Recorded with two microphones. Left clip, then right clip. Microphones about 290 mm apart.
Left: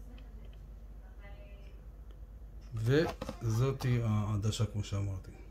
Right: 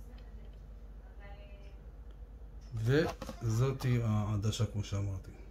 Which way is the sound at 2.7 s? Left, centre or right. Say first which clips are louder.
Left 1 dB; centre.